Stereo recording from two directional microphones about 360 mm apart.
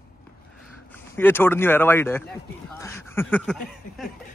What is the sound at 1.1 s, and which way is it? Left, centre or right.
Speech, centre.